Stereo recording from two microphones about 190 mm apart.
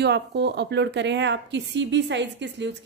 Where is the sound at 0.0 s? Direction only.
65° right (ahead or behind).